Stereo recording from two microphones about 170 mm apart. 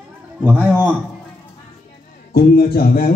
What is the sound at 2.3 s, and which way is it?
Speech, 65° left (ahead or behind).